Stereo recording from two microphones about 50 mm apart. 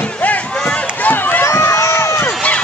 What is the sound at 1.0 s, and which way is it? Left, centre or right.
Run, left.